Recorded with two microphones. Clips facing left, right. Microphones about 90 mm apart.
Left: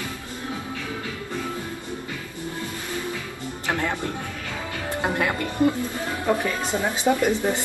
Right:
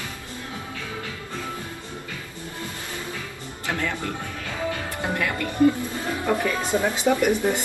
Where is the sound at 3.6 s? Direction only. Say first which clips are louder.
Left 2 dB; 20° left (ahead or behind).